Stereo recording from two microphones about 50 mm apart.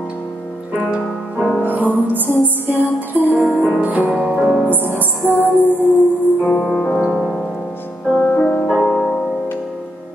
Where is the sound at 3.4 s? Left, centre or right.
Right.